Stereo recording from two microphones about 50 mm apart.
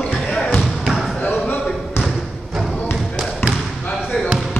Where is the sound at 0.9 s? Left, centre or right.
Centre.